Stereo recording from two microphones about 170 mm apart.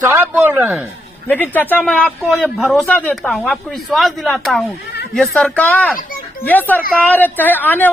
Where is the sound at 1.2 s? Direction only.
10° left (ahead or behind).